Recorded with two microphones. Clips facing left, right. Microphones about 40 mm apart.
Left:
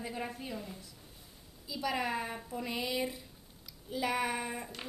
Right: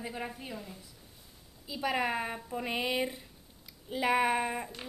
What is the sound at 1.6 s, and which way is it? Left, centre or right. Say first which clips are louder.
A woman's voice: right 3 dB; right.